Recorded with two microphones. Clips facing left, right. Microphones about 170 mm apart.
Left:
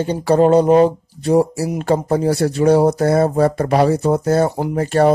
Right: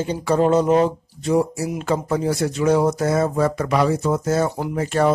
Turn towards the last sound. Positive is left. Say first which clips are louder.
# left 5 dB
turn(degrees=35)  # may be behind; listen again after turning